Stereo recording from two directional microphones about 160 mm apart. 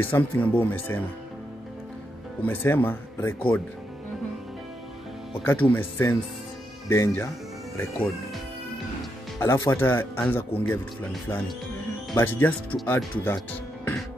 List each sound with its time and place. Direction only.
0.0 s speech: 10° left (ahead or behind)
2.4 s speech: 10° left (ahead or behind)
5.4 s speech: 10° left (ahead or behind)
9.4 s speech: 15° left (ahead or behind)